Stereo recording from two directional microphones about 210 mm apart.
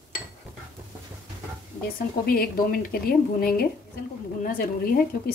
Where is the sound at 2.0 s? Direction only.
45° left (ahead or behind).